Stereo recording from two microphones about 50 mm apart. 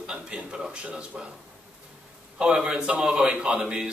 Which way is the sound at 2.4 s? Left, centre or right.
Centre.